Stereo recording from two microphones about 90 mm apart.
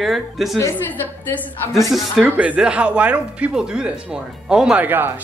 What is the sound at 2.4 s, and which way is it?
Speech, 15° right (ahead or behind).